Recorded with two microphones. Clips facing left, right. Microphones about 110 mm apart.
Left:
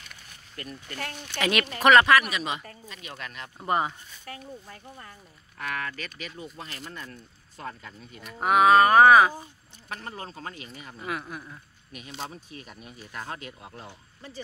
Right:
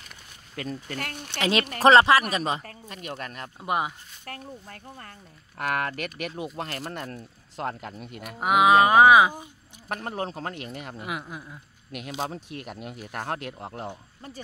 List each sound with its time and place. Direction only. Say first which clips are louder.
0.6 s speech: right 7 dB; 90° right
1.4 s speech: right 3 dB; 25° right (ahead or behind)
2.6 s speech: right 4 dB; 60° right (ahead or behind)
3.5 s speech: left 1 dB; 10° right (ahead or behind)
4.2 s speech: right 2 dB; 55° right (ahead or behind)
8.4 s speech: even; 10° right (ahead or behind)
9.8 s speech: right 7 dB; 60° right (ahead or behind)
11.0 s speech: left 4 dB; 15° right (ahead or behind)
12.3 s speech: right 6 dB; 75° right (ahead or behind)
13.1 s speech: right 5 dB; 65° right (ahead or behind)